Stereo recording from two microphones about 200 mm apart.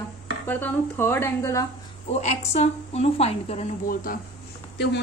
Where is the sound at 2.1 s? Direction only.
35° left (ahead or behind).